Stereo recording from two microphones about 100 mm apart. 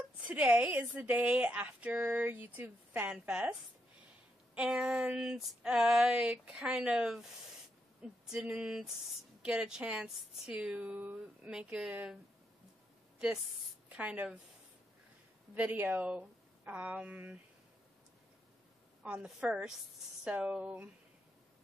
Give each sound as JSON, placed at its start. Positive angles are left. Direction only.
{"t": 0.3, "sound": "a woman's voice", "side_deg": -15}
{"t": 4.6, "sound": "a woman's voice", "side_deg": -10}
{"t": 8.0, "sound": "a sound", "side_deg": -5}
{"t": 9.4, "sound": "a woman's voice", "side_deg": -10}
{"t": 13.8, "sound": "a woman's voice", "side_deg": -15}
{"t": 15.5, "sound": "a woman's voice", "side_deg": -15}
{"t": 19.2, "sound": "a woman's voice", "side_deg": -10}